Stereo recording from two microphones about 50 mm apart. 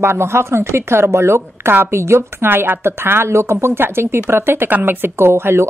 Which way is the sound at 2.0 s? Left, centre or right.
Right.